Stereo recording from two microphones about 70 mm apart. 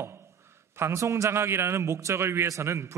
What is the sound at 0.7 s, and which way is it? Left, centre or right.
A man's voice, right.